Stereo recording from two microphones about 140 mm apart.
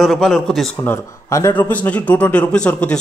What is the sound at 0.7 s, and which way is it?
Speech, 20° left (ahead or behind).